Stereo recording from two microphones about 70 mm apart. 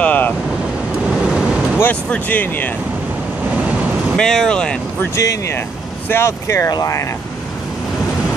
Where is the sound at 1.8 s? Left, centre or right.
Left.